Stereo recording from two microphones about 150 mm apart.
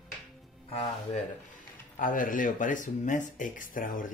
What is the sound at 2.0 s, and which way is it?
Speech, 65° left (ahead or behind).